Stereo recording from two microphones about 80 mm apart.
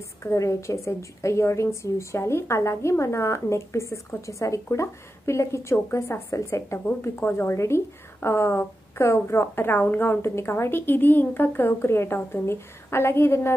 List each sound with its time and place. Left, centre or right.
0.2 s a woman's voice: left